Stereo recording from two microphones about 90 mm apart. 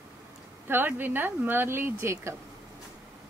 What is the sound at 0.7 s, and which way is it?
Speech, 25° right (ahead or behind).